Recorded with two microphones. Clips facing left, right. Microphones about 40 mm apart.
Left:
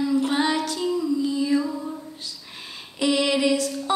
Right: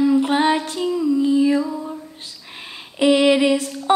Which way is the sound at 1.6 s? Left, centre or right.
Centre.